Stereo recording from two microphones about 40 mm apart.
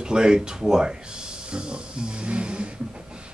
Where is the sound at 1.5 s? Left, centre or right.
Right.